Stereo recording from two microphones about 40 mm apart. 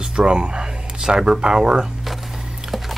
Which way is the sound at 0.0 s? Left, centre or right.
Right.